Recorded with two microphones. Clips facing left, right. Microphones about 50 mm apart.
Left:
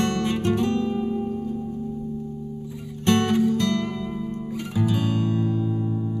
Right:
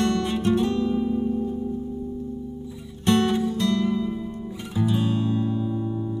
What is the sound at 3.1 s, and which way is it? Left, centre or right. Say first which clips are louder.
Music: left 1 dB; left.